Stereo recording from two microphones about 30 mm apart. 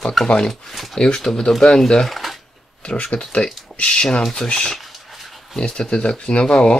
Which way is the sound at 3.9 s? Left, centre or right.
Left.